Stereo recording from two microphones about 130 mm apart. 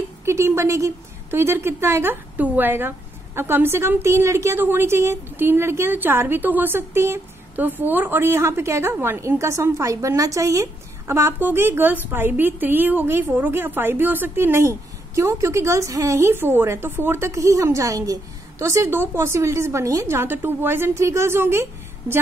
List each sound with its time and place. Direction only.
0.2 s a woman's voice: 20° right (ahead or behind)